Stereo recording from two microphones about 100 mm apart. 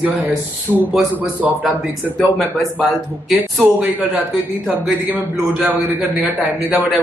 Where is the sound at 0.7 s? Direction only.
15° right (ahead or behind).